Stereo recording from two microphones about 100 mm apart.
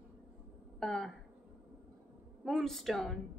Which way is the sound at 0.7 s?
5° left (ahead or behind).